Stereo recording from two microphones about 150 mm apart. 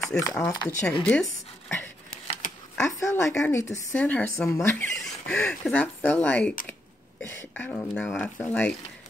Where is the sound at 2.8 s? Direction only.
20° left (ahead or behind).